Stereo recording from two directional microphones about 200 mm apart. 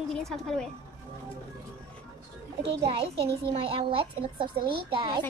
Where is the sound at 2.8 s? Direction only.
30° right (ahead or behind).